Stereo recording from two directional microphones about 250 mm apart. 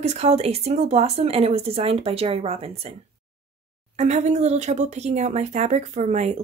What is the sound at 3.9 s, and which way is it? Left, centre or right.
Speech, right.